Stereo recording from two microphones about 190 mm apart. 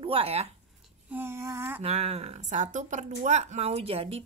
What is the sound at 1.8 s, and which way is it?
A woman's voice, 35° right (ahead or behind).